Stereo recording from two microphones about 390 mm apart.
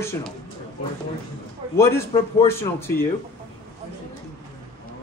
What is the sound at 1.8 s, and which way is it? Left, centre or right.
A man's voice, centre.